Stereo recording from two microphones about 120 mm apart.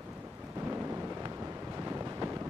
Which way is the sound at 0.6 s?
20° right (ahead or behind).